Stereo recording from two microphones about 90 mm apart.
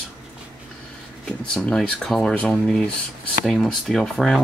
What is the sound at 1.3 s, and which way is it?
Speech, 10° left (ahead or behind).